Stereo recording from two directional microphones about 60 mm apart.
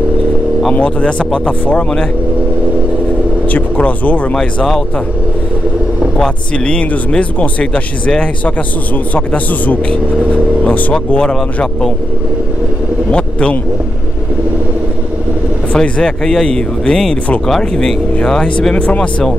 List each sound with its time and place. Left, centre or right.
0.7 s speech: left
3.4 s speech: left
6.1 s speech: centre
9.1 s speech: left
11.3 s speech: centre
13.1 s speech: centre
15.7 s speech: centre